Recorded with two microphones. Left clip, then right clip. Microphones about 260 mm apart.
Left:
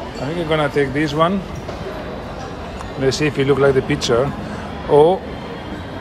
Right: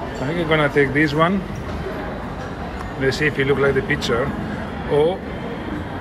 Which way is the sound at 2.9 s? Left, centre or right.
Centre.